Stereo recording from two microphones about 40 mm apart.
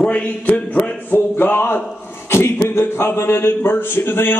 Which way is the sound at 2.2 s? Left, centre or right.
Left.